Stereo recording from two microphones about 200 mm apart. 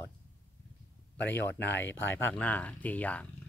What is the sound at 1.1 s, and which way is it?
Speech, 60° left (ahead or behind).